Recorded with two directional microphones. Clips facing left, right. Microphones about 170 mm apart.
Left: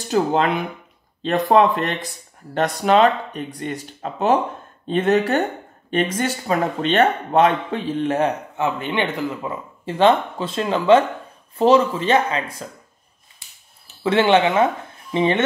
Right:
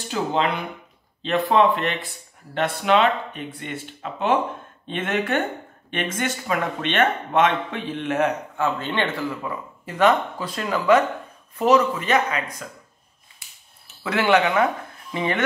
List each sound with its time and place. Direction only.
0.1 s speech: 45° left (ahead or behind)
8.5 s speech: 15° left (ahead or behind)
14.0 s speech: 25° left (ahead or behind)